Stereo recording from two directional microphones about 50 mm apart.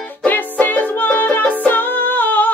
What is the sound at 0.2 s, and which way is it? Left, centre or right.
Music, left.